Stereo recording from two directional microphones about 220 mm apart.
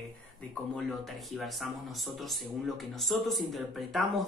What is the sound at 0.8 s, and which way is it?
Speech, centre (ahead or behind).